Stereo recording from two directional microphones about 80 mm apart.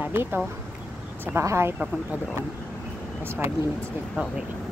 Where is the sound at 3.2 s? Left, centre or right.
Right.